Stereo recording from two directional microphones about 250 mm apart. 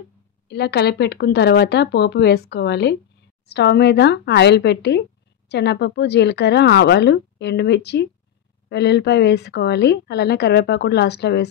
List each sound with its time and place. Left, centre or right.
0.5 s a woman's voice: left